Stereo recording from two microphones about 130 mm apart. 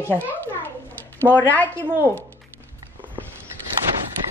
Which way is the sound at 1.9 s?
15° right (ahead or behind).